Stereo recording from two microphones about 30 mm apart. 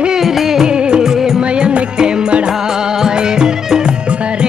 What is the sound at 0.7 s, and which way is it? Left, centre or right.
Music, right.